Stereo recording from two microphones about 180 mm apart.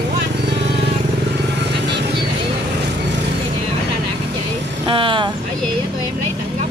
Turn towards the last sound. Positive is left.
turn(degrees=-30)  # may be behind; listen again after turning